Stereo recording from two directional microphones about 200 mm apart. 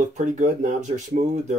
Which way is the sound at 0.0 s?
35° right (ahead or behind).